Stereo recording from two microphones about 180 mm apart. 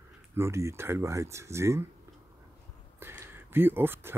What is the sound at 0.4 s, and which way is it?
Speech, 15° right (ahead or behind).